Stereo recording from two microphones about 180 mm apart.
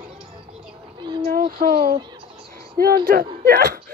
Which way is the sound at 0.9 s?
25° right (ahead or behind).